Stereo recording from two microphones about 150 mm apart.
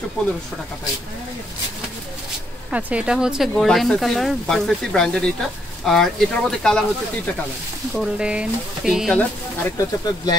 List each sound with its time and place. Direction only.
0.2 s speech: 5° left (ahead or behind)
2.7 s speech: 10° right (ahead or behind)
7.9 s speech: 5° right (ahead or behind)
9.7 s speech: 20° left (ahead or behind)